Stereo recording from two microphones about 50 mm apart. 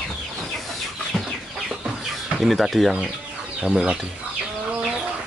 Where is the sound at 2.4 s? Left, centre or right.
Centre.